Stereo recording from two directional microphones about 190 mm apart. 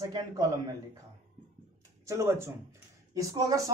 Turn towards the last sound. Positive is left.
turn(degrees=-15)  # may be behind; listen again after turning